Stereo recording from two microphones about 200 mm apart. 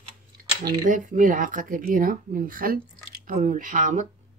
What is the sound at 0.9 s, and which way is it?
Speech, 40° right (ahead or behind).